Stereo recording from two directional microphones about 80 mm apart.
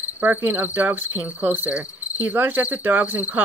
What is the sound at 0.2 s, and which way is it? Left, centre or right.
Cricket, right.